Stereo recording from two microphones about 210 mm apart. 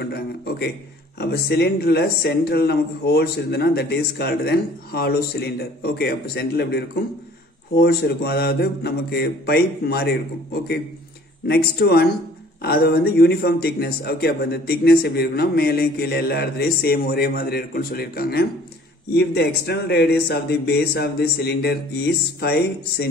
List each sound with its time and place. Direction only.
0.0 s a man's voice: 50° left (ahead or behind)